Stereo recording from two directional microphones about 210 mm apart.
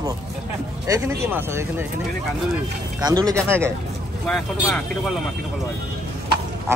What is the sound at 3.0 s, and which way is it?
Speech, 20° right (ahead or behind).